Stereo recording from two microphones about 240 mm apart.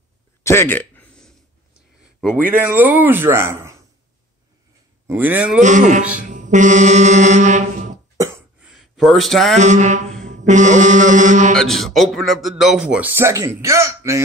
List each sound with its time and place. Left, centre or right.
0.4 s a sound: centre
2.1 s speech: centre
5.0 s speech: centre
5.6 s mantra: right
6.2 s music: right
8.2 s cough: centre
9.6 s mantra: right
11.5 s speech: centre